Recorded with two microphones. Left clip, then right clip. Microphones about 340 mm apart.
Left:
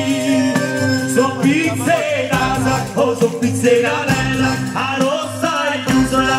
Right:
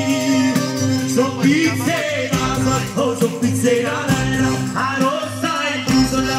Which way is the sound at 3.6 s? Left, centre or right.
Left.